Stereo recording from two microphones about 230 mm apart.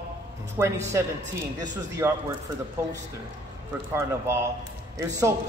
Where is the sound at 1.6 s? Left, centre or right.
Centre.